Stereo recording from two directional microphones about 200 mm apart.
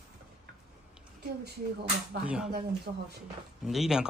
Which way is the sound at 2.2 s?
5° right (ahead or behind).